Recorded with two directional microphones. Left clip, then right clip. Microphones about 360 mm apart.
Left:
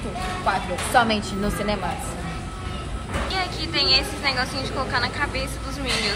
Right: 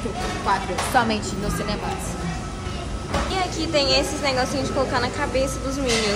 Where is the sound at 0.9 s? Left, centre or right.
Left.